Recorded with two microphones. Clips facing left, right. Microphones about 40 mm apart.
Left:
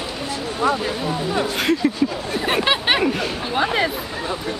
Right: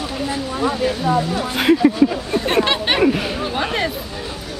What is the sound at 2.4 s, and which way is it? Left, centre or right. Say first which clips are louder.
Speech: even; centre.